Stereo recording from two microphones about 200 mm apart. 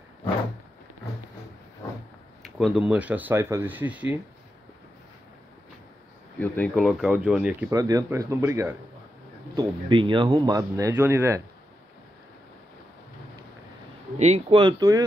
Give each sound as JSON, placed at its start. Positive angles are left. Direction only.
{"t": 2.4, "sound": "speech", "side_deg": -5}
{"t": 6.4, "sound": "speech", "side_deg": 10}
{"t": 6.7, "sound": "speech", "side_deg": 0}
{"t": 7.7, "sound": "speech", "side_deg": -20}
{"t": 9.6, "sound": "speech", "side_deg": -25}
{"t": 14.1, "sound": "speech", "side_deg": -35}